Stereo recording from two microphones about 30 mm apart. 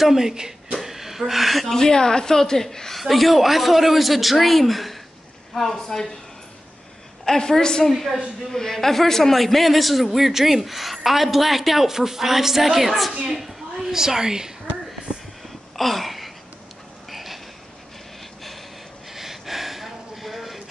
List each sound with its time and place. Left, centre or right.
0.0 s speech: centre
0.7 s a sound: centre
1.8 s a woman's voice: left
2.9 s a man's voice: centre
7.2 s a woman's voice: centre
7.9 s a man's voice: centre
8.5 s a man's voice: centre; by 14.5 s right
15.7 s a sound: centre
19.1 s a sound: centre